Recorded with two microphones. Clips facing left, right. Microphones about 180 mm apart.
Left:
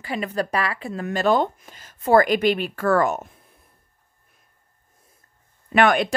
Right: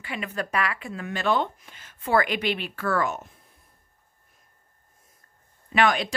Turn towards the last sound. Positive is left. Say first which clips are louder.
# left 5 dB
turn(degrees=55)  # may be behind; listen again after turning